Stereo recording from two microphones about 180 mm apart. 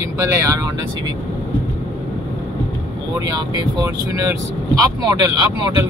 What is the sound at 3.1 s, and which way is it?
Speech, 20° right (ahead or behind).